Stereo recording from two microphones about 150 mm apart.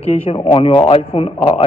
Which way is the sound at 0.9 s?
45° left (ahead or behind).